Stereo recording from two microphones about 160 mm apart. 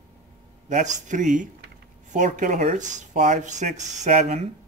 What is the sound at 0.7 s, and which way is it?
Speech, 50° right (ahead or behind).